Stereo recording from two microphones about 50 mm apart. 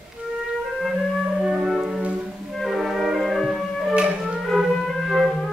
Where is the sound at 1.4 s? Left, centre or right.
Centre.